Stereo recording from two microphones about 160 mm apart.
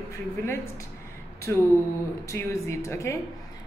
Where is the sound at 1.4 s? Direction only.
20° left (ahead or behind).